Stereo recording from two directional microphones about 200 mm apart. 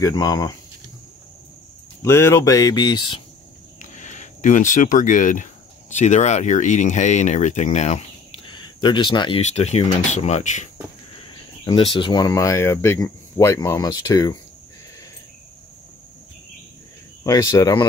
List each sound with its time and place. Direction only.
0.0 s speech: 20° left (ahead or behind)
2.0 s speech: 15° left (ahead or behind)
3.8 s speech: 35° left (ahead or behind)
9.4 s speech: 35° left (ahead or behind)
11.2 s speech: 25° left (ahead or behind)
17.2 s speech: 15° left (ahead or behind)